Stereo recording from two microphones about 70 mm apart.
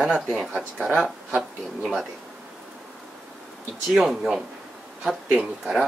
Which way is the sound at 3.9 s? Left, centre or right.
Centre.